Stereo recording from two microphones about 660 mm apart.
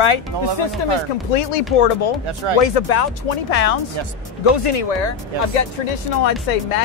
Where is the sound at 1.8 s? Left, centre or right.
Left.